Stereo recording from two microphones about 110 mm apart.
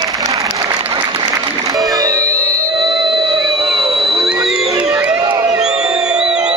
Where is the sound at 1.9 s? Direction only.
35° right (ahead or behind).